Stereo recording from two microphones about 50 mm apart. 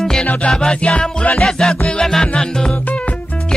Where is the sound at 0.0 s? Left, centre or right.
Centre.